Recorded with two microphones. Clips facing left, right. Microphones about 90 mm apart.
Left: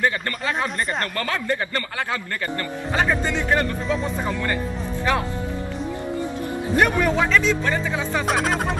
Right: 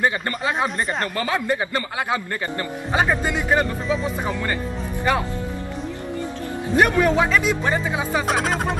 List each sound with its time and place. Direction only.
0.0 s a man's voice: 20° right (ahead or behind); by 1.1 s centre (ahead or behind)
1.1 s a man's voice: 15° right (ahead or behind)
6.8 s a man's voice: 5° right (ahead or behind)
8.3 s speech: centre (ahead or behind)